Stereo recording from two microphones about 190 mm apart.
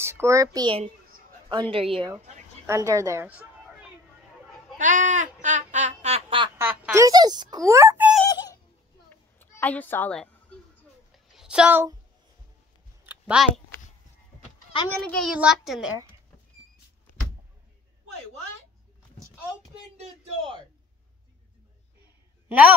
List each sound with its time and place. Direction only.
0.0 s a woman's voice: 15° right (ahead or behind); by 2.3 s 30° right (ahead or behind)
2.6 s a woman's voice: 15° right (ahead or behind)
4.7 s speech: 40° right (ahead or behind)
6.6 s a child's voice: 10° right (ahead or behind)
8.3 s a sound: 20° left (ahead or behind)
9.4 s a sound: 10° left (ahead or behind)
11.3 s speech: 5° right (ahead or behind)
13.0 s a sound: 5° right (ahead or behind)
15.0 s a child's voice: 5° left (ahead or behind)
20.0 s a man's voice: 25° right (ahead or behind)
22.5 s a man's voice: 10° right (ahead or behind)